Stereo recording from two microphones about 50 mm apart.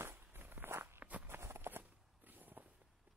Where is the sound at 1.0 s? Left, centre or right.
Right.